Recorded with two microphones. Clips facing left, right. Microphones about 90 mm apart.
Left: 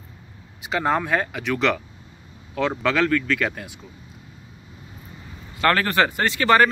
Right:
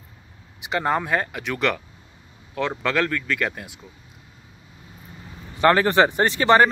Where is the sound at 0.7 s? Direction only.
5° right (ahead or behind).